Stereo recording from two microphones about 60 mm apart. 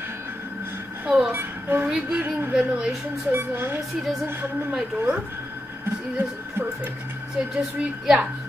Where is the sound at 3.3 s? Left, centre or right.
Right.